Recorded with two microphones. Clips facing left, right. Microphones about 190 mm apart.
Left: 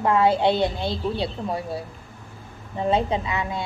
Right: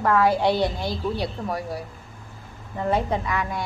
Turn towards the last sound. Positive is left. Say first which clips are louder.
# even
turn(degrees=20)  # may be behind; listen again after turning